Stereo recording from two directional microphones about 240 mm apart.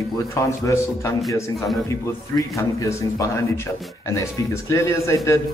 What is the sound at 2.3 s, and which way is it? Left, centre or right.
A man's voice, centre.